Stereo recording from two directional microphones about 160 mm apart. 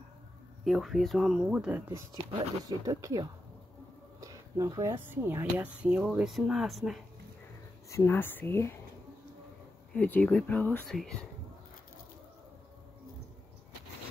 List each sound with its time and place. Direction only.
0.7 s speech: centre (ahead or behind); by 3.3 s 20° right (ahead or behind)
4.2 s a sound: 20° right (ahead or behind)
5.0 s speech: 15° right (ahead or behind)
7.9 s speech: 15° left (ahead or behind)
9.9 s speech: 10° left (ahead or behind)